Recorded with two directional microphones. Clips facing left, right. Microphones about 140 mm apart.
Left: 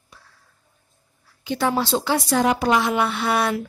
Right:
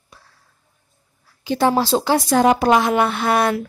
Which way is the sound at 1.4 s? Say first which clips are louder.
Right 5 dB; 35° right (ahead or behind).